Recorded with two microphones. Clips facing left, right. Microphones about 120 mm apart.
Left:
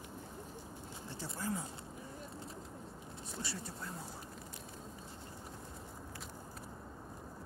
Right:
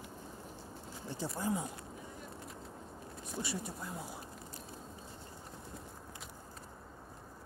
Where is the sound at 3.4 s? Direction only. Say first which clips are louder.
Right 5 dB; 15° right (ahead or behind).